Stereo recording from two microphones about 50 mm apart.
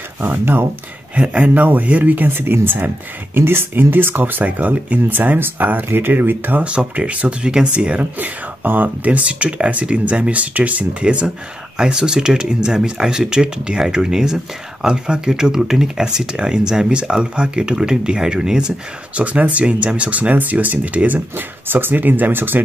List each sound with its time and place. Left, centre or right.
0.2 s speech: right
1.1 s speech: right
2.2 s speech: right
5.9 s speech: right
6.6 s speech: right
19.1 s speech: right